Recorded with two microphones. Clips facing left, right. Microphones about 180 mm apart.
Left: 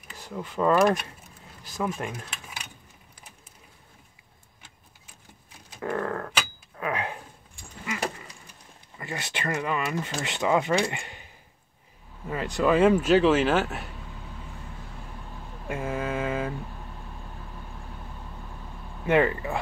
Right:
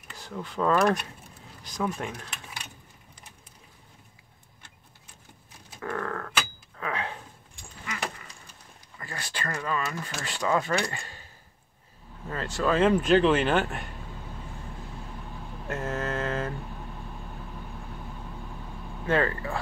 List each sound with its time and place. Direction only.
0.1 s speech: 5° left (ahead or behind)
5.8 s a sound: 20° left (ahead or behind)
8.9 s speech: 20° left (ahead or behind)
12.3 s speech: 15° left (ahead or behind)
15.6 s mantra: 10° left (ahead or behind)
19.0 s speech: 15° left (ahead or behind)